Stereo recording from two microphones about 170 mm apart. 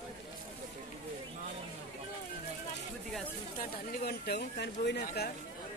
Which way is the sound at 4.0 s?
70° left (ahead or behind).